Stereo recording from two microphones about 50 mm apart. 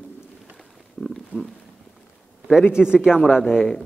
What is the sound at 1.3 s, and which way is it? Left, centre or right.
Speech, left.